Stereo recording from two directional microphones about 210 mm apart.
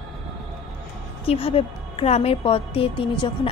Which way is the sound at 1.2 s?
30° left (ahead or behind).